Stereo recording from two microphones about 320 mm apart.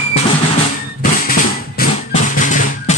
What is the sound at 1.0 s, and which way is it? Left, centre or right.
Music, left.